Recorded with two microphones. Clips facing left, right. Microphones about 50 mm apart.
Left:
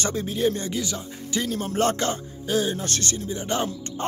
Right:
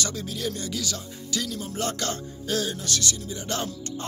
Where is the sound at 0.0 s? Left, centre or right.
Left.